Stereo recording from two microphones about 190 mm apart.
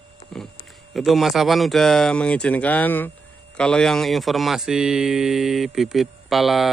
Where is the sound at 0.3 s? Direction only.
5° left (ahead or behind).